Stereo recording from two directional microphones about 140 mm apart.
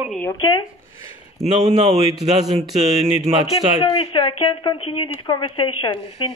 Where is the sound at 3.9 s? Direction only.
35° left (ahead or behind).